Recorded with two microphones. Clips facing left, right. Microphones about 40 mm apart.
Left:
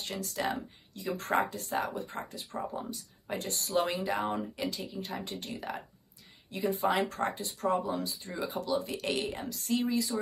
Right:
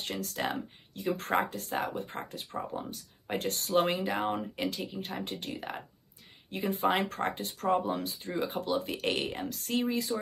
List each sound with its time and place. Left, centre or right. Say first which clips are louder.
0.0 s speech: even; right